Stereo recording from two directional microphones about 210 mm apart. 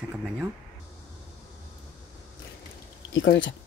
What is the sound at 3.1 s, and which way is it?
Speech, 60° left (ahead or behind).